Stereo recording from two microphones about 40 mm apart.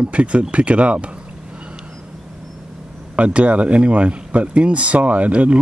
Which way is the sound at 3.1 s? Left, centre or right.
Right.